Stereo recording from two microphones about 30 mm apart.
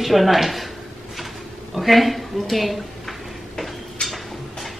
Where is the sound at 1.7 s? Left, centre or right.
Centre.